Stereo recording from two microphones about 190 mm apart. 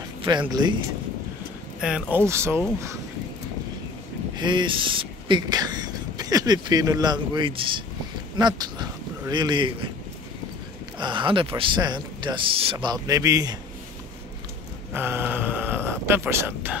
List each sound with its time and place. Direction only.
0.2 s speech: 25° right (ahead or behind)
1.8 s speech: 5° right (ahead or behind)
4.4 s speech: 25° right (ahead or behind)
11.0 s speech: 25° right (ahead or behind)
14.9 s speech: 10° right (ahead or behind)